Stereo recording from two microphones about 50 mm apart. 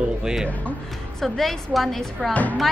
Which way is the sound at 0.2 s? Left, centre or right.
Centre.